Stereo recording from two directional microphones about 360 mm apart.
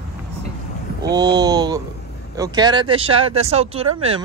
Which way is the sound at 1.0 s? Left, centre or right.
Centre.